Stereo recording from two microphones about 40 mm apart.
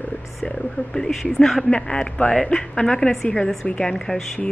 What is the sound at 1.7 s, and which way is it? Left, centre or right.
Speech, left.